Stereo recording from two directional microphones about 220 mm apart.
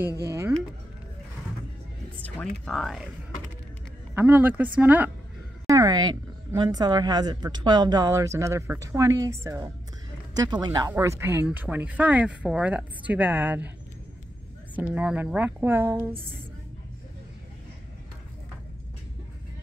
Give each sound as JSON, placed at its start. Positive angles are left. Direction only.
{"t": 0.2, "sound": "speech", "side_deg": -15}
{"t": 2.2, "sound": "speech", "side_deg": 5}
{"t": 4.1, "sound": "a woman's voice", "side_deg": -10}
{"t": 15.0, "sound": "a woman's voice", "side_deg": -5}